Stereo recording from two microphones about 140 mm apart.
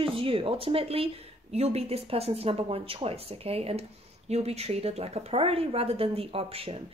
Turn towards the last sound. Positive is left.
turn(degrees=-45)  # may be behind; listen again after turning